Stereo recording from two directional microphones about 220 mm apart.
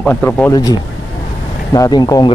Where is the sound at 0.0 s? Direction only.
10° left (ahead or behind).